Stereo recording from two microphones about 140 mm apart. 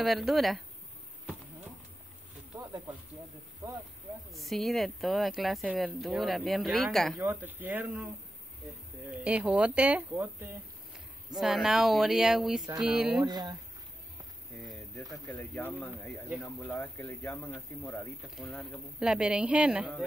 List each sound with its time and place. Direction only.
0.0 s speech: centre (ahead or behind)
2.5 s snake: 15° right (ahead or behind)
3.6 s speech: 20° right (ahead or behind)
4.3 s speech: centre (ahead or behind)
7.2 s speech: 10° right (ahead or behind)
9.1 s speech: 10° right (ahead or behind)
11.3 s speech: centre (ahead or behind)
13.2 s speech: 30° right (ahead or behind)
14.7 s speech: centre (ahead or behind)
18.3 s speech: centre (ahead or behind)